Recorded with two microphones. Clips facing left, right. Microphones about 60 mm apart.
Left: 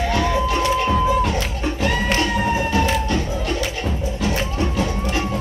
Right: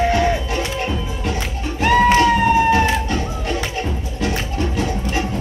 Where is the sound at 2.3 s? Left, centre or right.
Right.